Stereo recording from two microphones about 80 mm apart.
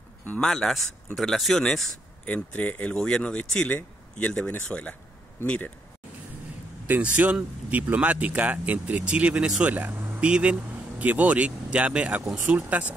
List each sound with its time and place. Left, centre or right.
0.4 s speech: centre
2.2 s speech: left
2.9 s speech: centre
6.9 s speech: centre